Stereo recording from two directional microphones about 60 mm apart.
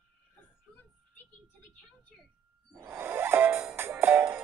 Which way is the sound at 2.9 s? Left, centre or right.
Right.